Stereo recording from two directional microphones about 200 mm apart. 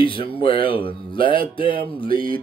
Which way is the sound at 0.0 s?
25° left (ahead or behind).